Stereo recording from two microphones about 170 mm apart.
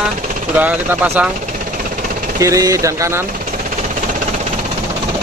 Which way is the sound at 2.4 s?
20° right (ahead or behind).